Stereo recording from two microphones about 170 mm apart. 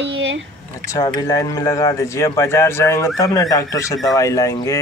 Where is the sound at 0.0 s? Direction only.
90° right.